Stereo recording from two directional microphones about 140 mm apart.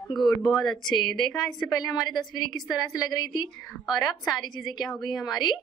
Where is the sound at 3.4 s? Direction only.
Centre (ahead or behind).